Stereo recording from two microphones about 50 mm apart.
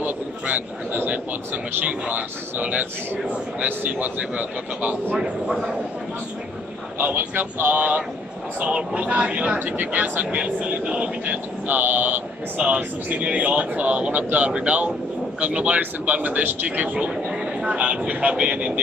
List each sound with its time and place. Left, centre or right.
0.0 s speech: right
5.2 s speech: centre
7.0 s speech: right
8.5 s speech: right
10.3 s speech: right
11.6 s speech: right
12.6 s speech: right